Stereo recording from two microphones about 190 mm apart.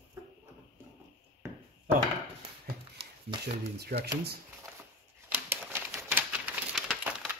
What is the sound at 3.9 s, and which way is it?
Speech, 55° right (ahead or behind).